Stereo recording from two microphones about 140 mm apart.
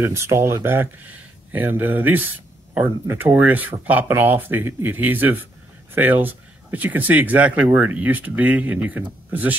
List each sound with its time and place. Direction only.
0.0 s speech: 20° right (ahead or behind)